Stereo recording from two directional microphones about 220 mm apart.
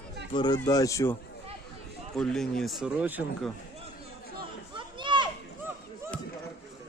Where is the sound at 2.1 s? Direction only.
Centre (ahead or behind).